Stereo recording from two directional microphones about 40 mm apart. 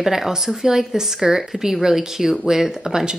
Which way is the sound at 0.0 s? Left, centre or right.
Centre.